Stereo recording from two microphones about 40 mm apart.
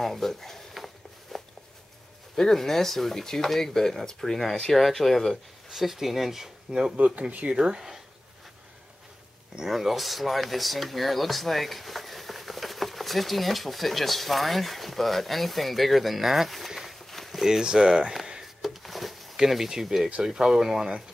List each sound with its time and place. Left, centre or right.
0.0 s speech: centre
0.7 s a sound: centre
2.3 s speech: centre
4.7 s speech: centre
5.7 s speech: centre
7.2 s speech: right
7.4 s speech: right
7.7 s speech: centre
9.7 s speech: centre
17.0 s walk: centre
17.5 s speech: centre
18.4 s a sound: centre
19.3 s speech: centre